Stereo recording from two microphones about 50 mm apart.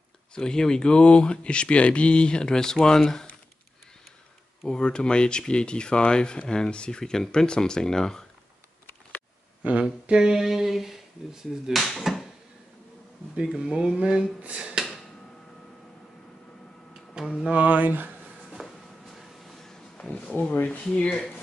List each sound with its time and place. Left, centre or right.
0.3 s speech: centre
4.6 s speech: centre
9.6 s speech: right
10.0 s a sound: centre
11.7 s speech: centre
13.6 s a sound: centre
14.4 s speech: right
17.2 s speech: centre
17.5 s speech: right
18.6 s a sound: centre
20.0 s speech: centre